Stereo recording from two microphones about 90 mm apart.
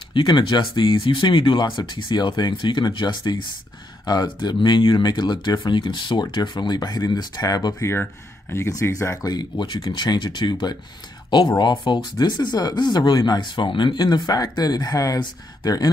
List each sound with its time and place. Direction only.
0.1 s speech: 60° left (ahead or behind); by 7.7 s 45° left (ahead or behind)
7.8 s speech: 25° left (ahead or behind)
9.3 s speech: 55° left (ahead or behind)
14.0 s speech: 50° left (ahead or behind)